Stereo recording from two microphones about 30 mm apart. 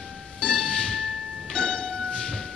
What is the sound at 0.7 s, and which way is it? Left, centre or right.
Music, left.